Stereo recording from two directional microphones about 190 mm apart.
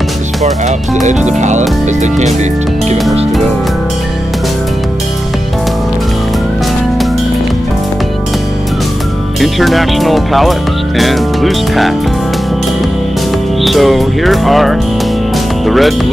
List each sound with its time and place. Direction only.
1.0 s speech: 40° right (ahead or behind)
9.4 s speech: centre (ahead or behind)
13.6 s speech: centre (ahead or behind)